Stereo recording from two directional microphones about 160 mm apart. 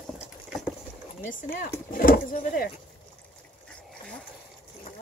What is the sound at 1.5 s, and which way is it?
Speech, 65° left (ahead or behind).